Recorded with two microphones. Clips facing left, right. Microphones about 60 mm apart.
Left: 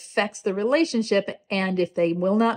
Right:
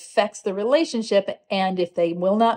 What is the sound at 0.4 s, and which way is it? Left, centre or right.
Speech, left.